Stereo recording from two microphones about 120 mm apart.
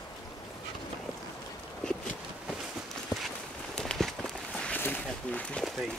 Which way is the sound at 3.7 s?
5° left (ahead or behind).